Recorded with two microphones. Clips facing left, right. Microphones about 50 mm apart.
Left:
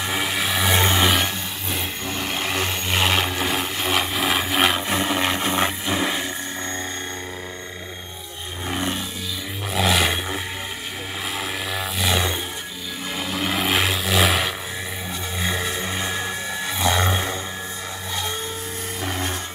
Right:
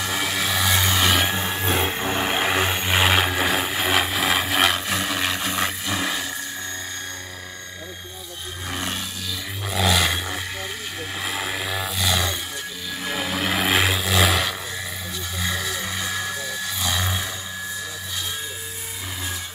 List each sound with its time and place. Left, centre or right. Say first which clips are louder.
0.0 s vehicle: left 1 dB; centre
0.7 s a sound: left 4 dB; left
2.0 s vehicle: right 4 dB; centre
4.8 s a sound: left 3 dB; left
8.6 s roar: left 3 dB; centre
9.7 s vehicle: left 1 dB; centre
11.2 s vehicle: right 1 dB; centre
13.1 s vehicle: right 1 dB; centre
15.3 s a sound: left 2 dB; left